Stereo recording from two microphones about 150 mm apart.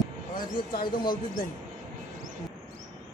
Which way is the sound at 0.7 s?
70° left (ahead or behind).